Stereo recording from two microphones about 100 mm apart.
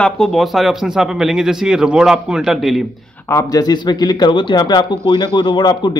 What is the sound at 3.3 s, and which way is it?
A man's voice, 40° left (ahead or behind).